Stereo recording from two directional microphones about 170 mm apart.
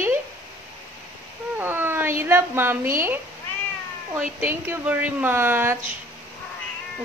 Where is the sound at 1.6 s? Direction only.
10° right (ahead or behind).